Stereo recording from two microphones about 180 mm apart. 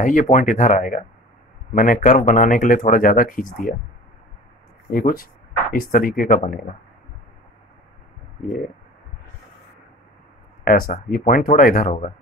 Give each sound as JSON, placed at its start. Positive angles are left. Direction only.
{"t": 0.0, "sound": "speech", "side_deg": 45}
{"t": 4.9, "sound": "speech", "side_deg": 50}
{"t": 10.6, "sound": "speech", "side_deg": 50}